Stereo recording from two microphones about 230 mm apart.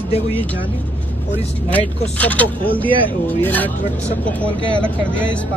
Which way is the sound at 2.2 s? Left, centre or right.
Centre.